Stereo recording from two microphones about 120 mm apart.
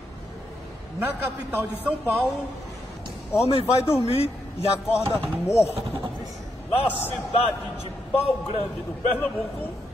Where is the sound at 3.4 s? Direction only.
55° left (ahead or behind).